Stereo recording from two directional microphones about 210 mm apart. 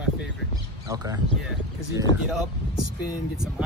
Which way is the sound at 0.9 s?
15° right (ahead or behind).